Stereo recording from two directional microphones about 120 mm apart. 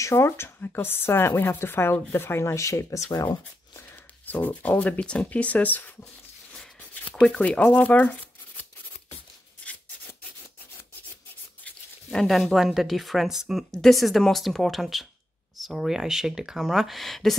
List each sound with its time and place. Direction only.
0.0 s speech: 25° left (ahead or behind)
3.7 s speech: 15° left (ahead or behind)
6.5 s a sound: 10° left (ahead or behind)
11.6 s speech: 5° left (ahead or behind)